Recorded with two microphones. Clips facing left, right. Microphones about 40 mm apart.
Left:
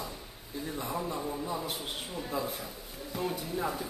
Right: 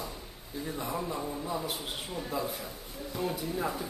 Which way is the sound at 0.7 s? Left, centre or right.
Centre.